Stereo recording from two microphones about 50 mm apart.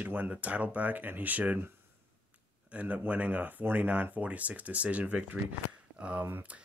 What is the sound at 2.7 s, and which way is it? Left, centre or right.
Speech, right.